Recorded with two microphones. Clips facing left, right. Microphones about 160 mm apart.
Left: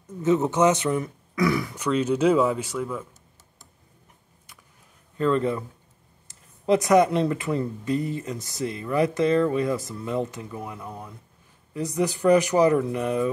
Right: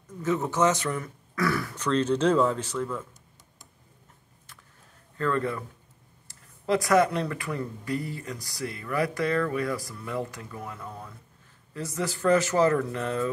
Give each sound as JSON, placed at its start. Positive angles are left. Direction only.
{"t": 0.2, "sound": "speech", "side_deg": 20}
{"t": 5.1, "sound": "speech", "side_deg": 20}